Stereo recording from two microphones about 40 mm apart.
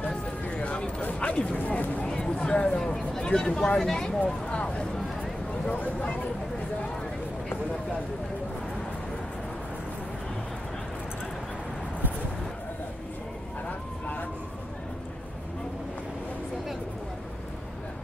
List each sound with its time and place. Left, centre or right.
0.5 s a sound: left
1.2 s speech: left
2.0 s a sound: centre
2.3 s speech: left
4.5 s speech: left
13.7 s vehicle: left